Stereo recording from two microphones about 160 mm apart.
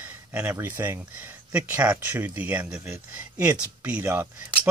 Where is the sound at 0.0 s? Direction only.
10° right (ahead or behind).